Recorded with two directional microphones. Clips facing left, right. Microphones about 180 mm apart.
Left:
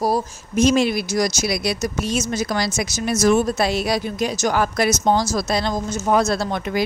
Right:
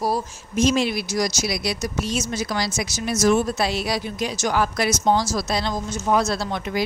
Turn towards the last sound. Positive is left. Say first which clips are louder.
# left 3 dB
turn(degrees=50)  # may be behind; listen again after turning